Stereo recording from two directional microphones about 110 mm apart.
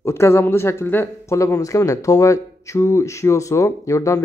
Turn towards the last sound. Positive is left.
turn(degrees=30)  # may be behind; listen again after turning